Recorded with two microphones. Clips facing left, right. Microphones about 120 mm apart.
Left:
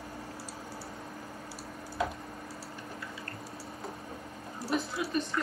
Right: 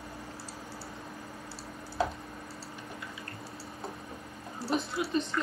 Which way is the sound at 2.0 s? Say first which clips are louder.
Right 2 dB; 30° right (ahead or behind).